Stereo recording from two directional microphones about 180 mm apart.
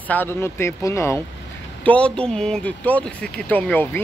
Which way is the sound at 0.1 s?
10° left (ahead or behind).